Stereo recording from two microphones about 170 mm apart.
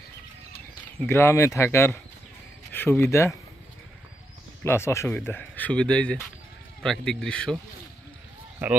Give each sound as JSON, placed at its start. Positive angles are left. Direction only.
{"t": 1.0, "sound": "speech", "side_deg": 15}
{"t": 4.6, "sound": "speech", "side_deg": 15}